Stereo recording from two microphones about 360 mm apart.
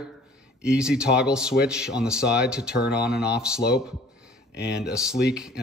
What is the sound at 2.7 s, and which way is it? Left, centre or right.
Speech, left.